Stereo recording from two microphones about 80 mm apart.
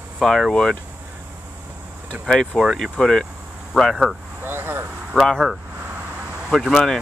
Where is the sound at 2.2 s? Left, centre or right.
Centre.